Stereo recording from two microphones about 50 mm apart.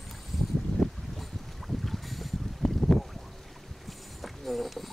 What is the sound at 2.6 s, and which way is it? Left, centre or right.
Boat, centre.